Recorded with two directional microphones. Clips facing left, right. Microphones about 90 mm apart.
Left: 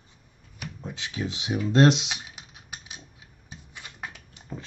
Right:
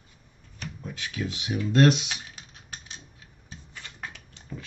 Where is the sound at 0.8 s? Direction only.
25° left (ahead or behind).